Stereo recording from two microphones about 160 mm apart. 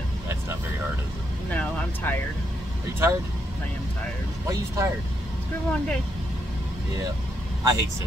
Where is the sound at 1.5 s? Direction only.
10° left (ahead or behind).